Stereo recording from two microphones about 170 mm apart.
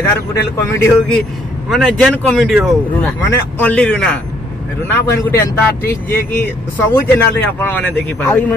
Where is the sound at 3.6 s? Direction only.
10° left (ahead or behind).